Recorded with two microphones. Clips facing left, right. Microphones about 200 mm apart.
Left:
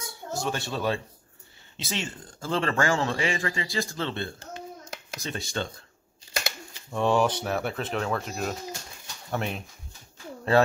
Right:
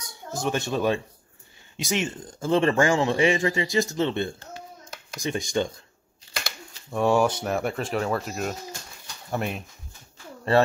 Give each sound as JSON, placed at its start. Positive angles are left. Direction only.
{"t": 0.0, "sound": "a man's voice", "side_deg": -20}
{"t": 6.9, "sound": "speech", "side_deg": -10}